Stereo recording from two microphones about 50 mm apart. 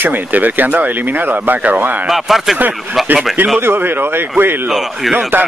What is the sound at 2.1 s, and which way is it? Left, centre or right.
Speech, centre.